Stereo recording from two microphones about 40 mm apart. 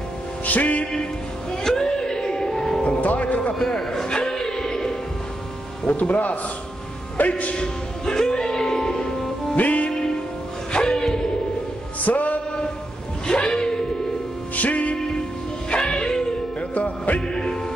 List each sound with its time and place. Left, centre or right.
0.5 s speech: left
1.5 s music: centre
3.0 s speech: left
3.5 s music: centre
5.9 s speech: left
7.5 s music: centre
9.6 s music: left
10.7 s music: centre
12.0 s music: left
13.3 s a sound: left
14.5 s music: left
15.9 s music: centre
16.7 s music: left
17.3 s music: centre